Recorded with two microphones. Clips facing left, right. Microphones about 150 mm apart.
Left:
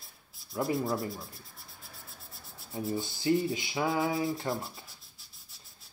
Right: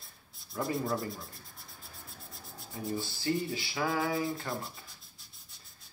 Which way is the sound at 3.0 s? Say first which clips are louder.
Left 6 dB; 20° left (ahead or behind).